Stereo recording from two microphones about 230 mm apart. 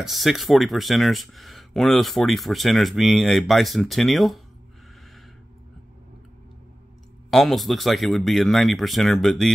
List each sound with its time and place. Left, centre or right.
0.0 s speech: centre
7.2 s speech: centre